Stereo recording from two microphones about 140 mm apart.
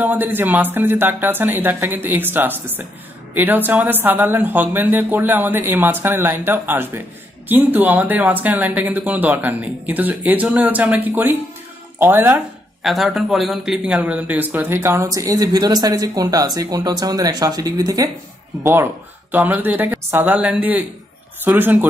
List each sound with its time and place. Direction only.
0.0 s speech: 15° right (ahead or behind)
12.8 s speech: centre (ahead or behind)